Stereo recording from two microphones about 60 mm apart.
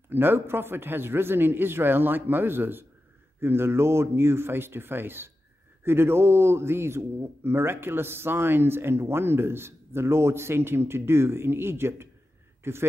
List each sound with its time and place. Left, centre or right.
0.1 s a man's voice: right